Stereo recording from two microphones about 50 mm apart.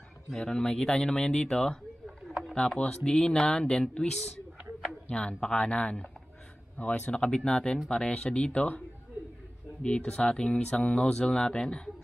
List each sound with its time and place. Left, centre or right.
0.4 s speech: centre
2.0 s a sound: centre
2.5 s speech: centre
7.1 s speech: centre
9.8 s speech: centre